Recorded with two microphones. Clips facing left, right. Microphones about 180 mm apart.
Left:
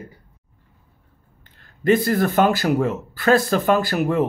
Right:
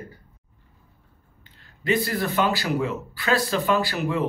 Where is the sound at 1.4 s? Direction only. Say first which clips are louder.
Left 11 dB; 50° left (ahead or behind).